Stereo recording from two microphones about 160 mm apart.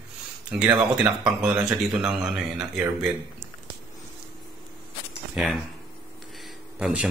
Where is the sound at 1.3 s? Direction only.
5° right (ahead or behind).